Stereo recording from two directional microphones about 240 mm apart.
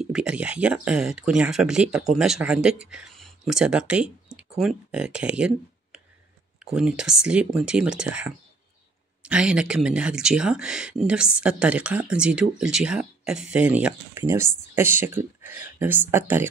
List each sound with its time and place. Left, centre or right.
0.0 s speech: centre